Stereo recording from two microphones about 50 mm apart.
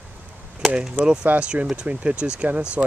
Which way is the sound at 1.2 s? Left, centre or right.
Right.